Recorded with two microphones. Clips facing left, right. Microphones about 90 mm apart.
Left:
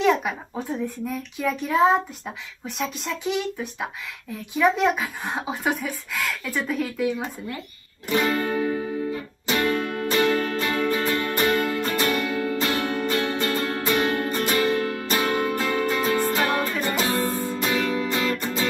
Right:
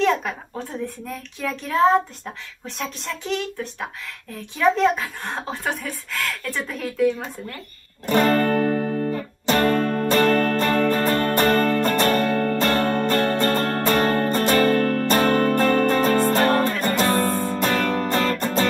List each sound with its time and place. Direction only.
0.0 s a child's voice: 5° left (ahead or behind)
8.1 s music: 45° right (ahead or behind)
17.0 s music: 55° right (ahead or behind)